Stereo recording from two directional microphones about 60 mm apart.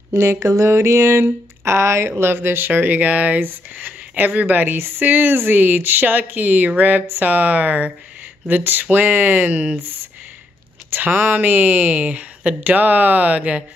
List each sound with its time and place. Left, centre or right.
0.1 s a sound: right
2.7 s speech: right
11.0 s speech: right